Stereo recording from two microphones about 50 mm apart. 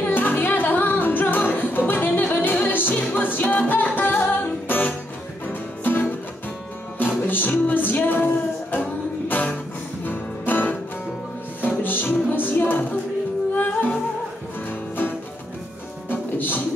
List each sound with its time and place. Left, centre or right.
0.0 s music: left
10.0 s music: left
16.1 s music: left